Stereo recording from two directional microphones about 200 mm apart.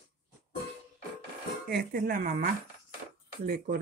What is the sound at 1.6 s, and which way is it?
Speech, 45° right (ahead or behind).